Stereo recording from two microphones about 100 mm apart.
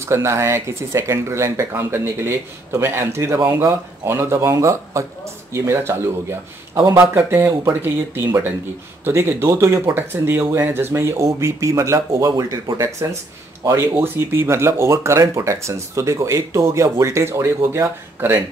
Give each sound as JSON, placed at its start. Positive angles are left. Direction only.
{"t": 0.0, "sound": "speech", "side_deg": -30}
{"t": 7.2, "sound": "speech", "side_deg": -20}
{"t": 13.9, "sound": "speech", "side_deg": -20}